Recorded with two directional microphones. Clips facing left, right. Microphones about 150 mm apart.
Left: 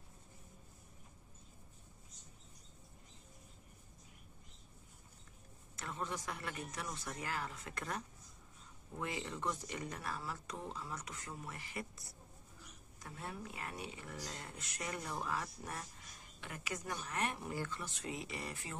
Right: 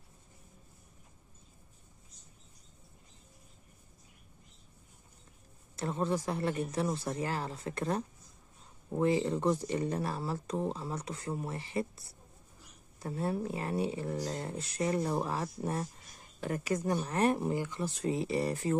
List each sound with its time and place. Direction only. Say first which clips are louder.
5.8 s speech: right 11 dB; 35° right (ahead or behind)